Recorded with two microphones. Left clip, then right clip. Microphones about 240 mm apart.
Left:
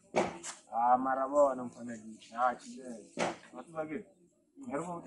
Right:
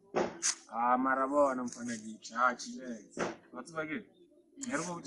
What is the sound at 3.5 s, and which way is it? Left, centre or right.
A man's voice, right.